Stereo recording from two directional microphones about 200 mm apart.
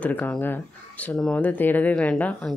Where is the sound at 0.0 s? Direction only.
5° left (ahead or behind).